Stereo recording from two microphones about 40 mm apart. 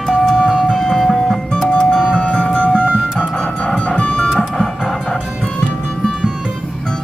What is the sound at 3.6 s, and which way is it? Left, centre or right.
Music, left.